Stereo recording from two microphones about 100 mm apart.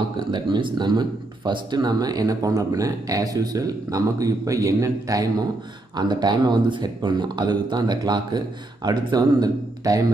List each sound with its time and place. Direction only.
0.3 s speech: 55° right (ahead or behind); by 5.3 s 35° right (ahead or behind)
5.9 s speech: 45° right (ahead or behind)